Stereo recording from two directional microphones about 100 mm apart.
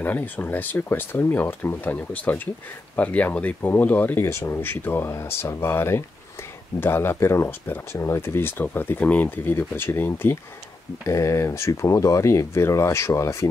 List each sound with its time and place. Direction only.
0.0 s speech: 15° left (ahead or behind)